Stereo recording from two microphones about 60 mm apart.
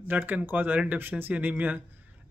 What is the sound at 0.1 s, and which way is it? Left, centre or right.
A man's voice, right.